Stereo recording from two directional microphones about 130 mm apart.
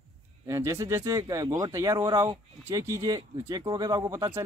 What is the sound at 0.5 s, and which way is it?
Speech, 25° right (ahead or behind).